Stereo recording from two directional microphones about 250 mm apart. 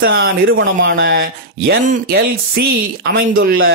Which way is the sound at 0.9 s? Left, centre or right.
Right.